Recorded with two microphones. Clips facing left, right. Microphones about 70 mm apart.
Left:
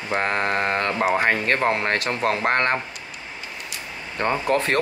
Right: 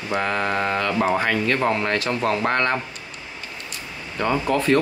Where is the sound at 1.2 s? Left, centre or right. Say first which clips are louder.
Even; left.